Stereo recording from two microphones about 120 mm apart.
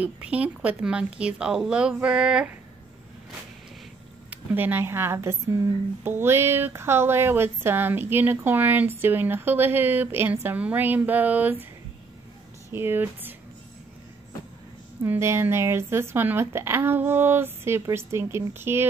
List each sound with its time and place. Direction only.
0.0 s a woman's voice: 10° right (ahead or behind)
4.3 s a woman's voice: 15° right (ahead or behind)
12.7 s a woman's voice: 15° right (ahead or behind)
15.0 s speech: 20° right (ahead or behind)